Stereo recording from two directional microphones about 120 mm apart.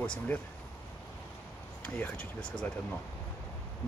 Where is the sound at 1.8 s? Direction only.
15° left (ahead or behind).